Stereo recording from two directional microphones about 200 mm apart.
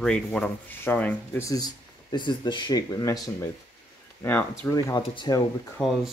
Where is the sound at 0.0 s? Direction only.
5° left (ahead or behind); by 5.4 s 20° left (ahead or behind).